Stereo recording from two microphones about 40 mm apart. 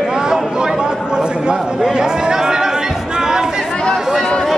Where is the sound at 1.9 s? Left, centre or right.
Centre.